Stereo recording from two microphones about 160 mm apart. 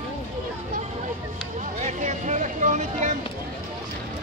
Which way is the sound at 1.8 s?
50° right (ahead or behind).